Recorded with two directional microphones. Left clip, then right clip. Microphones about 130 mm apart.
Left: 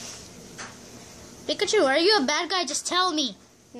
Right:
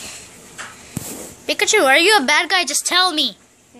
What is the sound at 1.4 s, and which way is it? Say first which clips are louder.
A woman's voice: right 7 dB; 15° right (ahead or behind).